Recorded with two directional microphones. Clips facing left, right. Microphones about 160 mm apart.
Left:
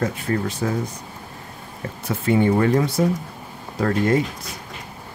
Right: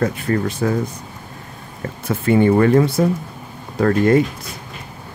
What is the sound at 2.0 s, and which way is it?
Speech, 60° right (ahead or behind).